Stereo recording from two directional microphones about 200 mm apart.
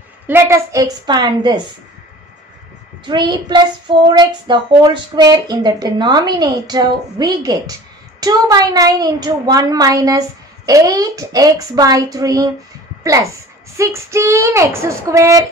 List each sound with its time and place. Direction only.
0.3 s a woman's voice: 15° right (ahead or behind)
3.1 s a woman's voice: 20° right (ahead or behind)